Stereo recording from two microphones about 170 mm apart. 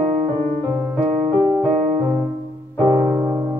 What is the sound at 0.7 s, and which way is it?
Music, 20° right (ahead or behind).